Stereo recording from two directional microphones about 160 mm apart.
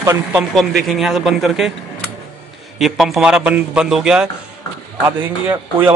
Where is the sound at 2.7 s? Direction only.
Centre (ahead or behind).